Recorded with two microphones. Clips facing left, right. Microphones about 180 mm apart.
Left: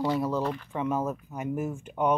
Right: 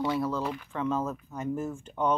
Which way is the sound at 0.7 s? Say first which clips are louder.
Left 1 dB; 15° left (ahead or behind).